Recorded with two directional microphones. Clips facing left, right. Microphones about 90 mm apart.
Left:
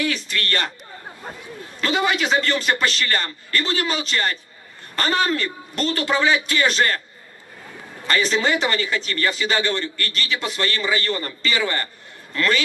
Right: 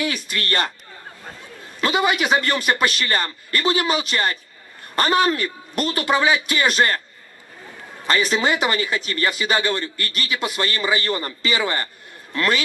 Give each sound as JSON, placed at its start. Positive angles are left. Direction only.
{"t": 0.0, "sound": "a man's voice", "side_deg": -15}
{"t": 1.8, "sound": "a man's voice", "side_deg": -15}
{"t": 8.1, "sound": "a man's voice", "side_deg": -15}